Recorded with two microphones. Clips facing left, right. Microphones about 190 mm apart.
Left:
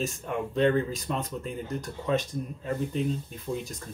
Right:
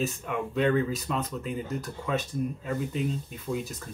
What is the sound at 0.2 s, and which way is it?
Speech, 25° left (ahead or behind).